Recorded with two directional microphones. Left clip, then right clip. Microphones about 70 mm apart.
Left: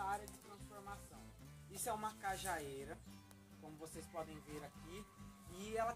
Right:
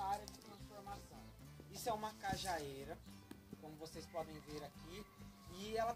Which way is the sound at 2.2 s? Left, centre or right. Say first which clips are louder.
Right 2 dB; right.